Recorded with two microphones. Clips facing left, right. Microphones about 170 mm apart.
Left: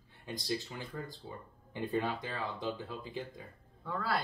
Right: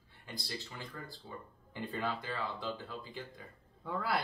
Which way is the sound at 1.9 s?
15° left (ahead or behind).